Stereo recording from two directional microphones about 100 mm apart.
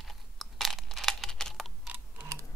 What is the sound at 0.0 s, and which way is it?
Crunch, centre (ahead or behind).